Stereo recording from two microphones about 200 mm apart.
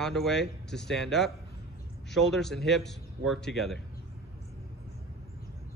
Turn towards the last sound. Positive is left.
turn(degrees=0)  # may be behind; listen again after turning